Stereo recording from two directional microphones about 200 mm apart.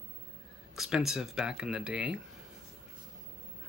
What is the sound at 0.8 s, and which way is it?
Speech, 5° right (ahead or behind).